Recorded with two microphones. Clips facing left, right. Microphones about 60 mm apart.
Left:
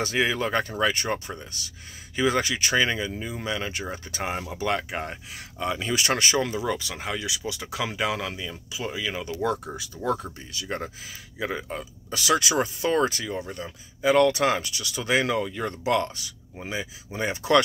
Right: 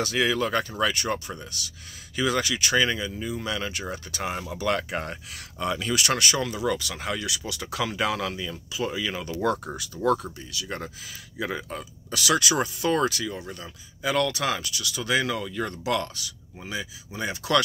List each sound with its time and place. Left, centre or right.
0.0 s speech: left
5.8 s speech: left
9.9 s speech: left
11.4 s speech: centre
12.1 s speech: left